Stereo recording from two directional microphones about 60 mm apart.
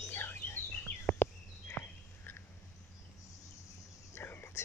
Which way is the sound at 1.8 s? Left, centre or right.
Left.